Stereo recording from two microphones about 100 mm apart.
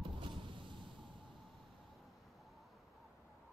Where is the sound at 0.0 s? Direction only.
55° right (ahead or behind).